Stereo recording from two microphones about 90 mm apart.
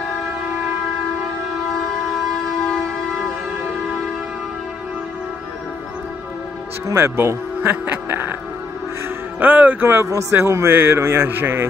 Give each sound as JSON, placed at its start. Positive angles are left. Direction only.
{"t": 2.6, "sound": "a sound", "side_deg": 5}
{"t": 6.9, "sound": "a man's voice", "side_deg": -30}
{"t": 9.4, "sound": "a man's voice", "side_deg": -20}